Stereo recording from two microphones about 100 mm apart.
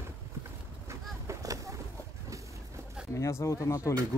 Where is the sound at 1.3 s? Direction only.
35° right (ahead or behind).